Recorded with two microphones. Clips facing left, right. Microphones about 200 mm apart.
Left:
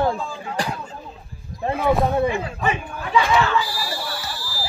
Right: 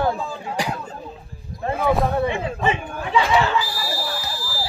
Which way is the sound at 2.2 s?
25° right (ahead or behind).